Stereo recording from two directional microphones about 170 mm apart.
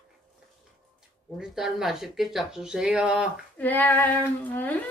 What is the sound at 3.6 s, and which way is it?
Speech, 10° left (ahead or behind).